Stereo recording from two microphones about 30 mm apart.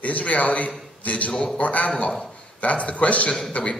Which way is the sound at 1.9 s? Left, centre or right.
Left.